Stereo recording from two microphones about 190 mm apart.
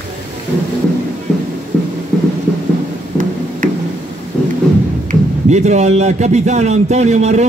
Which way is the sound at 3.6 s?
45° right (ahead or behind).